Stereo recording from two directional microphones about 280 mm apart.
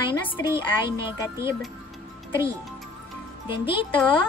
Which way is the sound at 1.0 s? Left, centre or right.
Centre.